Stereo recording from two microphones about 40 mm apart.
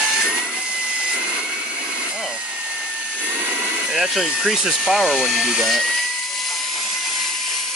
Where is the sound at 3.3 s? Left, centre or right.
Right.